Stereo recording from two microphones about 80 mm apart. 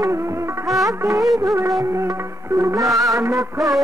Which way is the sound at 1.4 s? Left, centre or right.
Right.